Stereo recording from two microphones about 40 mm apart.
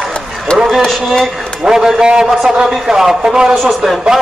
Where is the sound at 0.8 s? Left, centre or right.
Centre.